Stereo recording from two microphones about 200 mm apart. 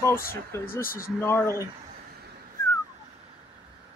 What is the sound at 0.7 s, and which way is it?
Speech, 45° left (ahead or behind).